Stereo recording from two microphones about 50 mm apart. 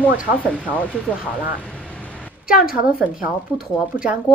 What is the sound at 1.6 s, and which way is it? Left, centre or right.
Vehicle, left.